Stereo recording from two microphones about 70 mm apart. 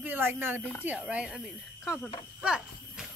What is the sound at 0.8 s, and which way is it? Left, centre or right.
Speech, right.